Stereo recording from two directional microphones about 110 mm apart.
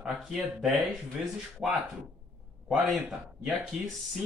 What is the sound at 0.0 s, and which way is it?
A man's voice, 5° right (ahead or behind).